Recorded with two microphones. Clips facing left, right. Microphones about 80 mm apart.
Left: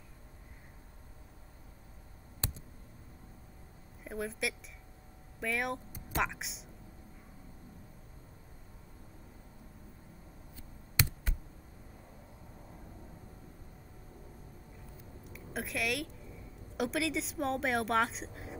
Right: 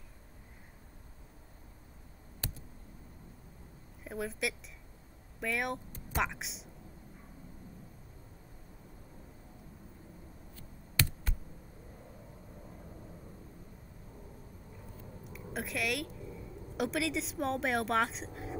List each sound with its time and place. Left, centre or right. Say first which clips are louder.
4.0 s a woman's voice: even; centre
10.5 s a sound: right 1 dB; centre
15.2 s a woman's voice: even; centre